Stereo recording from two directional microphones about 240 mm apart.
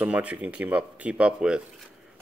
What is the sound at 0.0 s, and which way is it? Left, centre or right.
Speech, centre.